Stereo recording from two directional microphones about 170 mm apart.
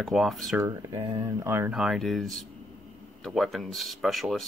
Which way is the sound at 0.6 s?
15° right (ahead or behind).